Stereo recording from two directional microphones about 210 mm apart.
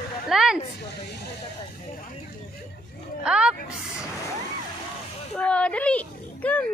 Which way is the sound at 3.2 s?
5° right (ahead or behind).